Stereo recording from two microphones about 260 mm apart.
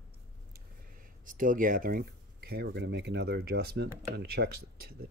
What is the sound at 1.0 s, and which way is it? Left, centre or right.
Speech, right.